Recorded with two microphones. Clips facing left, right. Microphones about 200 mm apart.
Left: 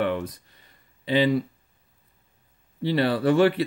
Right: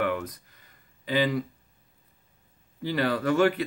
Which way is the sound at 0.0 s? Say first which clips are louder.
Left 2 dB; 30° left (ahead or behind).